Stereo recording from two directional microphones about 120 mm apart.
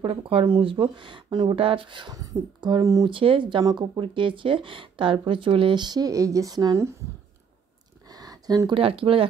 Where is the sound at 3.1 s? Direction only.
45° right (ahead or behind); by 6.9 s 30° right (ahead or behind).